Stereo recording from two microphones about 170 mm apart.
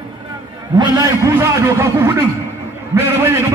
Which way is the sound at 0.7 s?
20° right (ahead or behind).